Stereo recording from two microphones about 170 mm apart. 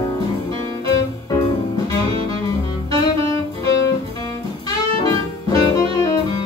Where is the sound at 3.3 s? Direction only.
20° left (ahead or behind).